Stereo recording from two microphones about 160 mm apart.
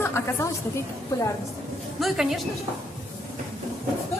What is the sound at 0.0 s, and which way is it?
Speech, 15° left (ahead or behind).